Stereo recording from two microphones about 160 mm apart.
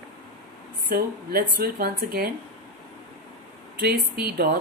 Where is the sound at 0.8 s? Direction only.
70° right (ahead or behind).